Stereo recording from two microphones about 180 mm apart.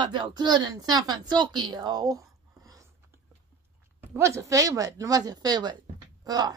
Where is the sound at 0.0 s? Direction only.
25° right (ahead or behind).